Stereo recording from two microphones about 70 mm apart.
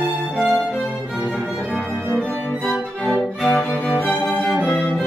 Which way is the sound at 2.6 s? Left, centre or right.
Centre.